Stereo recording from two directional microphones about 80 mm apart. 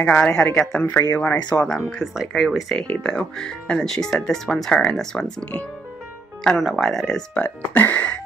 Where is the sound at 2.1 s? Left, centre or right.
Centre.